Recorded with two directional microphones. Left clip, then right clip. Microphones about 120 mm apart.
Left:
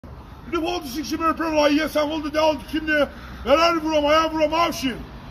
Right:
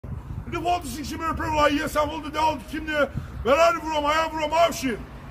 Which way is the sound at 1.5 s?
35° right (ahead or behind).